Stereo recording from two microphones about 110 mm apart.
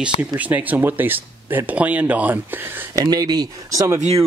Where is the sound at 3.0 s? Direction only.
35° right (ahead or behind).